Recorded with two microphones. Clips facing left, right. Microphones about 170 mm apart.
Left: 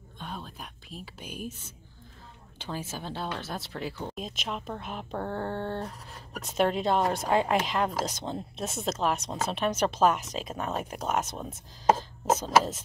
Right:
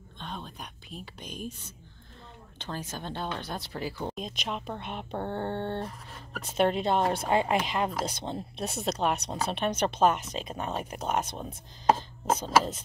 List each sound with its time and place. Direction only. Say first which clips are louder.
0.2 s a woman's voice: even; 5° left (ahead or behind)
5.1 s a sound: even; 20° right (ahead or behind)
6.4 s a woman's voice: even; centre (ahead or behind)